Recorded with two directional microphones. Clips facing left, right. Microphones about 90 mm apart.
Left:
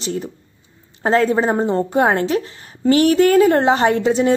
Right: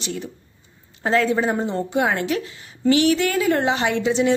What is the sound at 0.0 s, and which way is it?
A woman's voice, 35° left (ahead or behind).